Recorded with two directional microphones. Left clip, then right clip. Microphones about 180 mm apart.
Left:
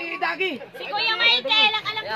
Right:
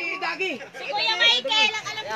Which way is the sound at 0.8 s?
50° left (ahead or behind).